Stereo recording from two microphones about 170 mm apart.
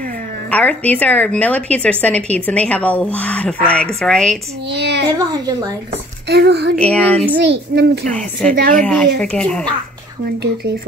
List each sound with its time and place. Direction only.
0.5 s speech: 10° left (ahead or behind)
4.6 s a child's voice: 80° right
6.2 s a woman's voice: 75° right (ahead or behind)
6.8 s speech: 10° left (ahead or behind)
7.3 s a child's voice: 85° right
8.1 s a woman's voice: 5° left (ahead or behind)